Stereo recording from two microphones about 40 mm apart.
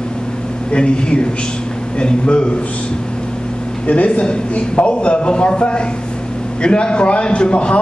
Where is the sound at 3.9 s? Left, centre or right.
Left.